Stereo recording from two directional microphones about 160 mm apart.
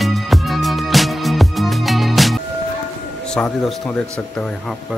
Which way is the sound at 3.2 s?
5° left (ahead or behind).